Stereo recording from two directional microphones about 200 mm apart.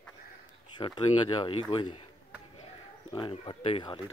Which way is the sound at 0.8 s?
20° left (ahead or behind).